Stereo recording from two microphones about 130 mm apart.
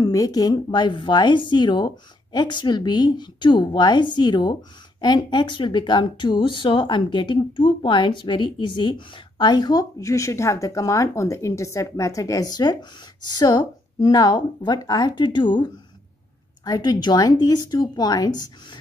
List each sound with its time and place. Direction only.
0.0 s a woman's voice: 30° left (ahead or behind)